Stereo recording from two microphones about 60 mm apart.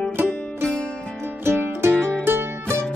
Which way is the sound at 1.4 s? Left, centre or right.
Right.